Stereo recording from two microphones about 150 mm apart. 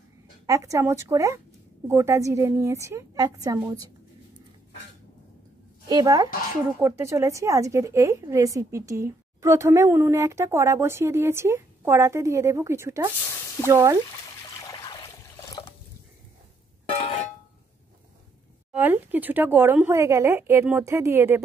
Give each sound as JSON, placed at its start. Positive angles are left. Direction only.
{"t": 0.5, "sound": "a woman's voice", "side_deg": -20}
{"t": 5.9, "sound": "a woman's voice", "side_deg": -25}
{"t": 18.7, "sound": "speech", "side_deg": -10}